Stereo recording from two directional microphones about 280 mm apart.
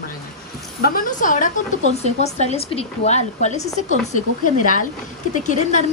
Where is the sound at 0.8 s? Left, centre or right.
Left.